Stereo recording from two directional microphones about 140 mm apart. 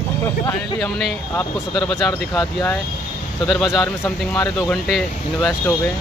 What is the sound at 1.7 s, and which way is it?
Speech, 30° left (ahead or behind).